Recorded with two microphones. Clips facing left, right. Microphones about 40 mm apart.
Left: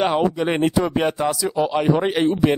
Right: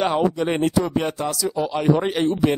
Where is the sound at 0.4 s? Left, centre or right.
Left.